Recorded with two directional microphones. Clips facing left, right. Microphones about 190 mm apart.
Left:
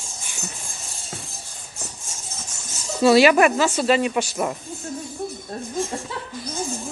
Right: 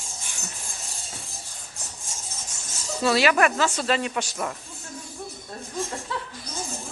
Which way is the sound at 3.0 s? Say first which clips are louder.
Left 7 dB; 15° left (ahead or behind).